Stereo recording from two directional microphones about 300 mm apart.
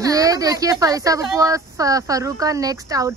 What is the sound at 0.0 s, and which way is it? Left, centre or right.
Speech, centre.